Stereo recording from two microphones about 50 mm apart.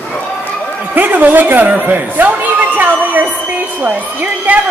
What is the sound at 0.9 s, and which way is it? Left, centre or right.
A man's voice, right.